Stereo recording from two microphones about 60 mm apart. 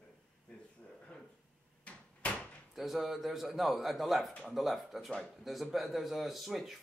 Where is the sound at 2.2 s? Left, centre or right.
Left.